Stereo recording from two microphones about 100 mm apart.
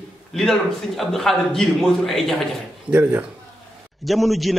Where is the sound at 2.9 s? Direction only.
15° right (ahead or behind).